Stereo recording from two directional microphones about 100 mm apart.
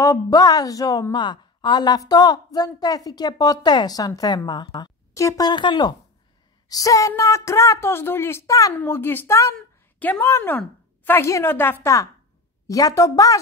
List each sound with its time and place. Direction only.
0.0 s speech: 35° left (ahead or behind)
1.1 s a woman's voice: 50° left (ahead or behind)
5.1 s a woman's voice: 30° left (ahead or behind)
5.5 s a woman's voice: 50° left (ahead or behind)
6.7 s speech: 35° left (ahead or behind)
8.7 s a woman's voice: 20° left (ahead or behind)
9.9 s a woman's voice: 15° left (ahead or behind)
10.2 s a woman's voice: 30° left (ahead or behind)